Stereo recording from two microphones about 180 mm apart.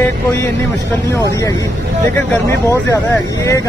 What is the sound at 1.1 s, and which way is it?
Speech, 15° left (ahead or behind).